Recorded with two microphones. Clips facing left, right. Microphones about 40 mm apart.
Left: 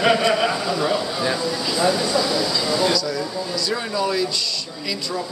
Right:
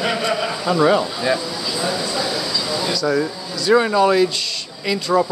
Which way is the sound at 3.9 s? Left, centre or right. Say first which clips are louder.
Right 7 dB; right.